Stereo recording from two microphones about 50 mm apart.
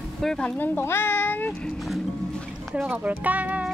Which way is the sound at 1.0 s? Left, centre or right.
Left.